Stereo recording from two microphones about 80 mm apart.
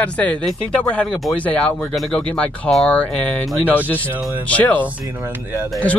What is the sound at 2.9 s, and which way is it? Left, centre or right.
Speech, centre.